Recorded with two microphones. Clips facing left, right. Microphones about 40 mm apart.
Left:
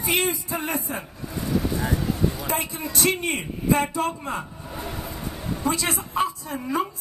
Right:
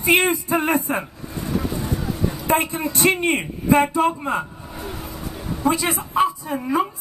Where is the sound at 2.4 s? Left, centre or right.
Right.